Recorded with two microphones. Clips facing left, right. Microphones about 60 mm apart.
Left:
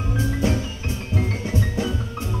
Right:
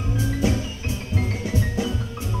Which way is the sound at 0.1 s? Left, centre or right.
Left.